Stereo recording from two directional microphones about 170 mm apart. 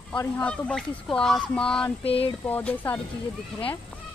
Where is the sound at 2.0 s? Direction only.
35° left (ahead or behind).